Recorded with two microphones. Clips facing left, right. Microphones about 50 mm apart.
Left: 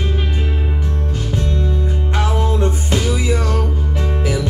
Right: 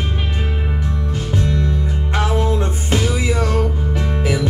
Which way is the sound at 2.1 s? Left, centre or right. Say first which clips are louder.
Right 2 dB; right.